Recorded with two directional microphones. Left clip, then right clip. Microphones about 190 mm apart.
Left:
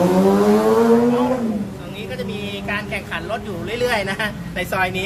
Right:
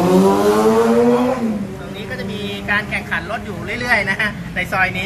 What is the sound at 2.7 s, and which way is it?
A woman's voice, 35° left (ahead or behind).